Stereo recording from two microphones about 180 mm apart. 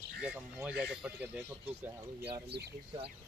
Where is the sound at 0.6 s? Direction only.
5° right (ahead or behind).